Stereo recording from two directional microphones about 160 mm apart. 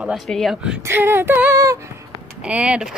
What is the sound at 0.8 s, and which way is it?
Speech, 15° right (ahead or behind).